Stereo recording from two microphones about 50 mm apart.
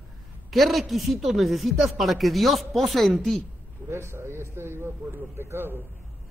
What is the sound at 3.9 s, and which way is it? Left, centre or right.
A man's voice, right.